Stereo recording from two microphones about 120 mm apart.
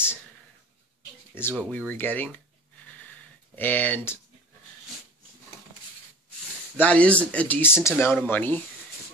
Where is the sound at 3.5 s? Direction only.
15° left (ahead or behind).